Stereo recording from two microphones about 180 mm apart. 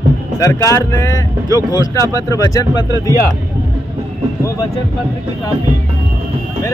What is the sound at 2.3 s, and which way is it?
Speech, 20° left (ahead or behind).